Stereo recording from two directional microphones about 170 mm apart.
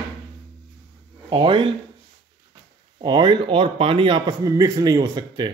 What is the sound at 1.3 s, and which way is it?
Speech, 30° right (ahead or behind).